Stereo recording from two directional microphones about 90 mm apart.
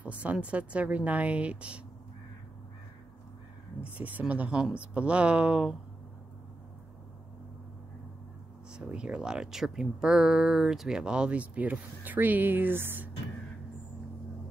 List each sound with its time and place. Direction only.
0.0 s speech: 15° right (ahead or behind)
4.0 s speech: 15° right (ahead or behind)
8.7 s speech: 10° right (ahead or behind)